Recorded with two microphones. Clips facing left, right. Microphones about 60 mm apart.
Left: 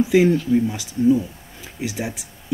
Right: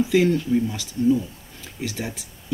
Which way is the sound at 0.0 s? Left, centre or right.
Centre.